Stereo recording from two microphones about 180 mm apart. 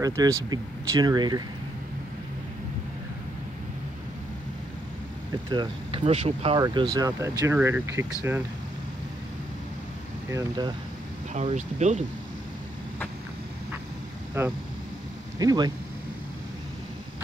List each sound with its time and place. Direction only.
0.0 s speech: 20° right (ahead or behind)
5.5 s speech: 25° right (ahead or behind)
10.3 s speech: 15° right (ahead or behind)
11.3 s speech: 40° right (ahead or behind)
14.3 s speech: 10° right (ahead or behind)